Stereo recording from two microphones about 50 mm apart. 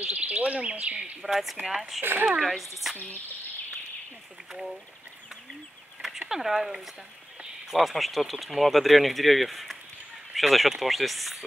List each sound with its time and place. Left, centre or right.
0.0 s speech: right
1.2 s speech: centre
2.0 s speech: right
2.4 s speech: centre
4.5 s speech: centre
6.1 s speech: centre